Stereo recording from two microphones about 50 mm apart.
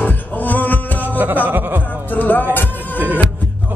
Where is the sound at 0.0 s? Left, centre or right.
Left.